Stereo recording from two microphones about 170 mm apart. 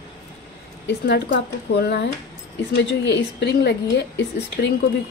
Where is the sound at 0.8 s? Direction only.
85° left.